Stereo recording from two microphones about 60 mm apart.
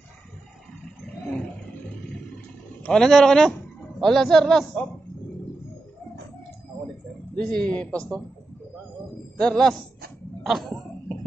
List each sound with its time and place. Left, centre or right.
2.8 s a man's voice: centre
7.3 s a man's voice: centre
9.4 s a man's voice: centre